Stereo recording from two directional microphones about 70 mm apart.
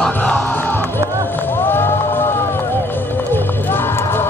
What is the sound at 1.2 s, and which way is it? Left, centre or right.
Run, left.